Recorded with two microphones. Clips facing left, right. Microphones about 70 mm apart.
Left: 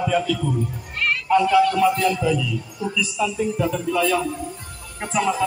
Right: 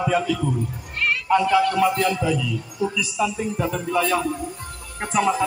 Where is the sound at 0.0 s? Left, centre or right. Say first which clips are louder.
Even; centre.